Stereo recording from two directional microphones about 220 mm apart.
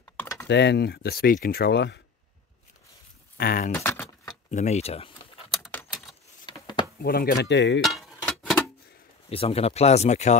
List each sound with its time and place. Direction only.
0.0 s typing: 10° left (ahead or behind)
0.5 s speech: 50° left (ahead or behind)
3.3 s speech: 40° left (ahead or behind)
3.7 s speech: 10° left (ahead or behind)
4.5 s speech: 30° left (ahead or behind)
5.5 s typing: 5° left (ahead or behind)
6.4 s a sound: 20° left (ahead or behind)
7.0 s speech: 45° left (ahead or behind)
7.8 s chink: centre (ahead or behind)
9.3 s speech: 25° left (ahead or behind)